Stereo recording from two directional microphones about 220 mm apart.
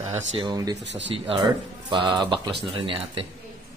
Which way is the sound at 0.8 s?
55° right (ahead or behind).